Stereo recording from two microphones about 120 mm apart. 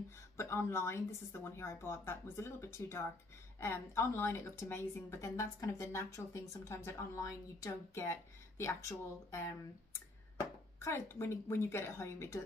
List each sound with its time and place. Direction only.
0.4 s a woman's voice: 20° left (ahead or behind)
10.8 s a woman's voice: 20° left (ahead or behind)